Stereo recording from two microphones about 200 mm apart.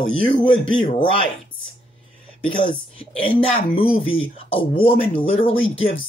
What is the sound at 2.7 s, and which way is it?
Speech, 25° left (ahead or behind).